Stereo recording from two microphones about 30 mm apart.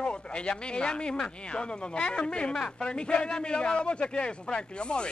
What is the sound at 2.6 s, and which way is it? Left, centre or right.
Speech, centre.